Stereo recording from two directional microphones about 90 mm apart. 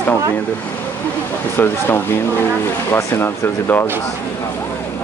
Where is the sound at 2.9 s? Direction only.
25° left (ahead or behind).